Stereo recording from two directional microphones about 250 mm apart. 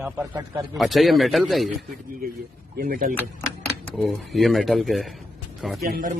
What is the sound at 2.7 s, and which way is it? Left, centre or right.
Speech, right.